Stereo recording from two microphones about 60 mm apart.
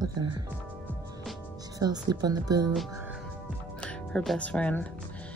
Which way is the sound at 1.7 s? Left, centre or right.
Right.